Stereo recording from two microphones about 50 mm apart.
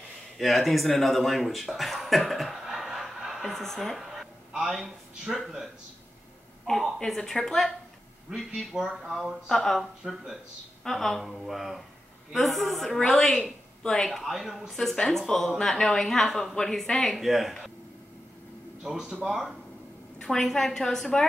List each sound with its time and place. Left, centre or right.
0.4 s a woman's voice: centre
6.7 s a woman's voice: left
7.1 s speech: centre
8.3 s speech: centre
9.5 s a woman's voice: centre
14.2 s a woman's voice: centre
17.2 s a woman's voice: centre
18.9 s speech: centre
20.2 s speech: centre